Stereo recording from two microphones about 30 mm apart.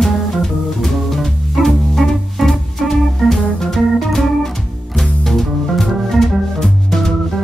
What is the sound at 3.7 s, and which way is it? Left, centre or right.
Organ, centre.